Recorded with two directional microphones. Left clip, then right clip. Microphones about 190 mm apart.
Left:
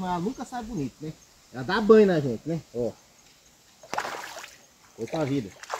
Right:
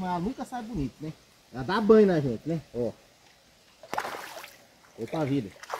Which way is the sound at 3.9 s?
5° right (ahead or behind).